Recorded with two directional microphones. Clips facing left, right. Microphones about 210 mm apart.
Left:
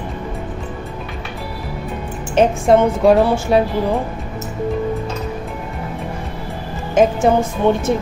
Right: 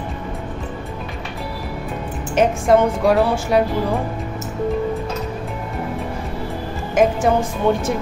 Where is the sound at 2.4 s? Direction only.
25° left (ahead or behind).